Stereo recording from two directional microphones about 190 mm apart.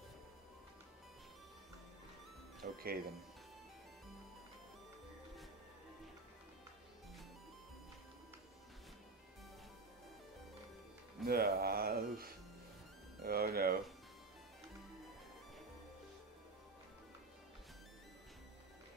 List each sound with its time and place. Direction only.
2.6 s speech: 50° right (ahead or behind)
11.2 s music: 55° right (ahead or behind)